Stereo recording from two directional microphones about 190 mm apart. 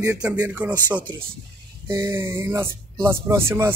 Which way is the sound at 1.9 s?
15° right (ahead or behind).